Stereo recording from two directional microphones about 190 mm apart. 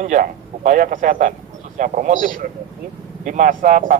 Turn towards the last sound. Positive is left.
turn(degrees=-45)  # may be behind; listen again after turning